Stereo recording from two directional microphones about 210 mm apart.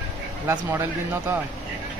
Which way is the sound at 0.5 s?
10° right (ahead or behind).